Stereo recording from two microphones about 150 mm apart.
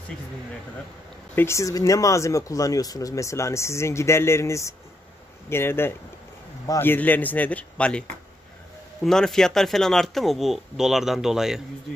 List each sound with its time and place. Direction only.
1.3 s a man's voice: 15° left (ahead or behind)
9.0 s speech: 5° left (ahead or behind)